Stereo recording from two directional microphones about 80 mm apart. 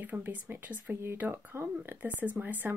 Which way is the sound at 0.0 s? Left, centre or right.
Right.